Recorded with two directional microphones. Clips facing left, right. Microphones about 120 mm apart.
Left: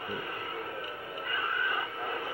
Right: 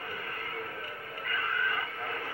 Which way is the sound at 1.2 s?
15° left (ahead or behind).